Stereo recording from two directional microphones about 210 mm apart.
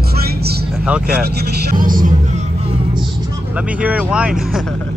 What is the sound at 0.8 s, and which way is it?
Speech, 5° right (ahead or behind).